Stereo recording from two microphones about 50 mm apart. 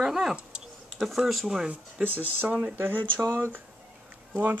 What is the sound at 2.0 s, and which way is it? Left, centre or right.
Speech, right.